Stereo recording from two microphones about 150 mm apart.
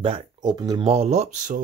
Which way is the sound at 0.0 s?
35° right (ahead or behind).